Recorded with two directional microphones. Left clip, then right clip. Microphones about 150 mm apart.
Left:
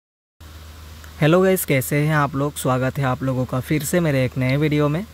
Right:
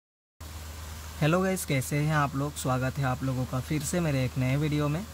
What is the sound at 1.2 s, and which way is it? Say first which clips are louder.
Speech: left 11 dB; 40° left (ahead or behind).